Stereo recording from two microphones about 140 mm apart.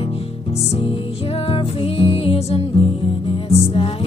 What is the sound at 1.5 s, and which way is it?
Music, 40° left (ahead or behind).